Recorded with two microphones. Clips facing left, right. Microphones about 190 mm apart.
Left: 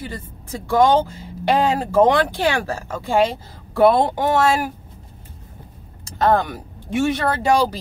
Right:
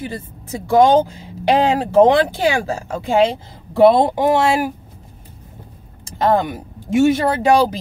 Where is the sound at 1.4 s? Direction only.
20° right (ahead or behind).